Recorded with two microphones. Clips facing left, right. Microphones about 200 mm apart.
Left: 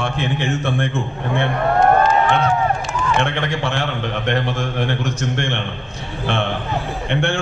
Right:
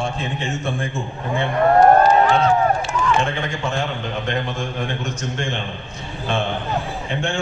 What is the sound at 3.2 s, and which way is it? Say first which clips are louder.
A man's voice: left 2 dB; 70° left (ahead or behind).